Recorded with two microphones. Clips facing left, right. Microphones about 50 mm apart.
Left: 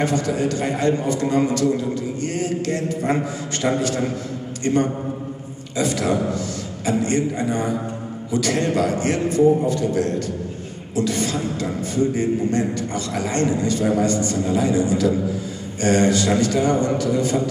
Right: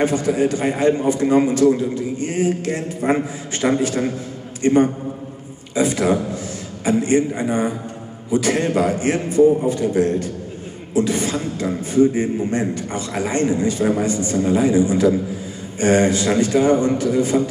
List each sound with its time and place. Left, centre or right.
0.0 s a man's voice: centre